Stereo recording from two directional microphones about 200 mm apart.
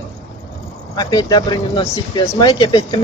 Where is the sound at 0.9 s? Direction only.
20° left (ahead or behind).